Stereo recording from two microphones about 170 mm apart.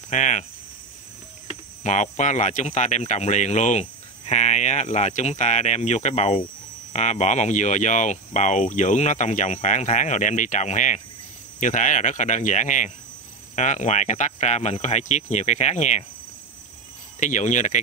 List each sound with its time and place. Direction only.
0.1 s speech: 45° left (ahead or behind)
1.8 s speech: 45° left (ahead or behind)
17.2 s speech: 45° left (ahead or behind)